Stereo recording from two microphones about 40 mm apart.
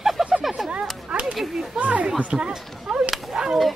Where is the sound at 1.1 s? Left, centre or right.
Right.